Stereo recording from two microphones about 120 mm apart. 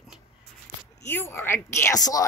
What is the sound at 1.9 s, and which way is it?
Speech, 30° left (ahead or behind).